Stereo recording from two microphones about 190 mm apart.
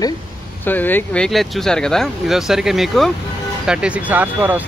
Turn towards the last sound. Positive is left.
turn(degrees=-10)  # may be behind; listen again after turning